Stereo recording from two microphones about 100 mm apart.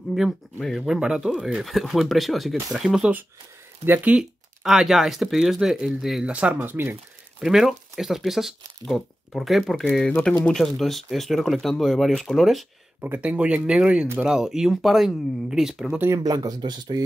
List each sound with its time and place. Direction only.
0.1 s speech: centre (ahead or behind)
3.8 s speech: 20° right (ahead or behind)
7.3 s speech: 5° right (ahead or behind)
13.0 s speech: 15° right (ahead or behind)
16.2 s speech: 40° right (ahead or behind)